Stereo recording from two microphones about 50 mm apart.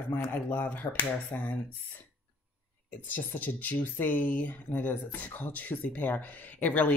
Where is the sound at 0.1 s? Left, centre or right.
Left.